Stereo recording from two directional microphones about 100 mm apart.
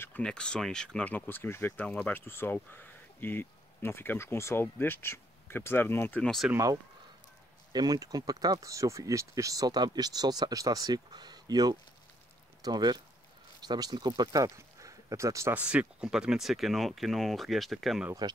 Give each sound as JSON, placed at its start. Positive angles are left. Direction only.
{"t": 0.2, "sound": "speech", "side_deg": 10}
{"t": 6.5, "sound": "speech", "side_deg": -35}
{"t": 15.5, "sound": "speech", "side_deg": -15}